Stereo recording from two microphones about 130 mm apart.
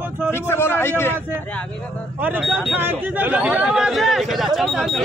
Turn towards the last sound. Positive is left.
turn(degrees=0)  # may be behind; listen again after turning